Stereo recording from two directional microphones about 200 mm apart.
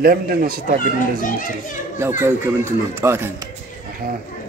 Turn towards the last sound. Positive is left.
turn(degrees=-15)  # may be behind; listen again after turning